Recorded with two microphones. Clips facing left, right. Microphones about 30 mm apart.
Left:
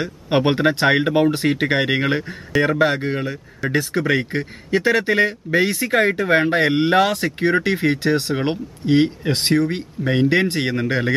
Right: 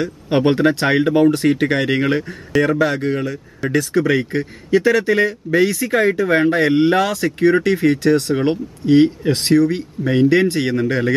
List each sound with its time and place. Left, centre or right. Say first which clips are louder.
0.0 s speech: right 2 dB; centre
2.8 s speech: right 1 dB; left
3.6 s speech: right 2 dB; centre
4.0 s speech: right 2 dB; centre